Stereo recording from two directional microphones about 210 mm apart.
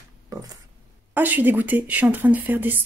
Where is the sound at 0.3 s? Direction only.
15° right (ahead or behind).